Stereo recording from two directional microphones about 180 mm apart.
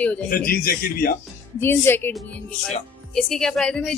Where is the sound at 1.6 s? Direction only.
10° left (ahead or behind).